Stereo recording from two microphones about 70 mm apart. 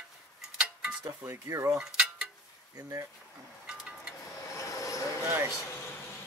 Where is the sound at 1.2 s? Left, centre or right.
Right.